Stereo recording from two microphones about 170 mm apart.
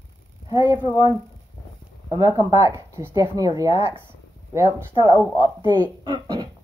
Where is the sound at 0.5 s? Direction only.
30° left (ahead or behind).